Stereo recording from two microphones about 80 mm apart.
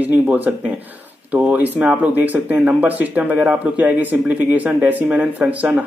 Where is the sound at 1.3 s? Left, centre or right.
Centre.